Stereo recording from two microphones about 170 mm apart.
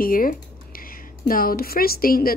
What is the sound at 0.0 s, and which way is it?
Speech, 55° left (ahead or behind).